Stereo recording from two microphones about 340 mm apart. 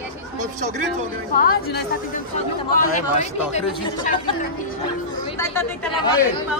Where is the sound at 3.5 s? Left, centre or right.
Centre.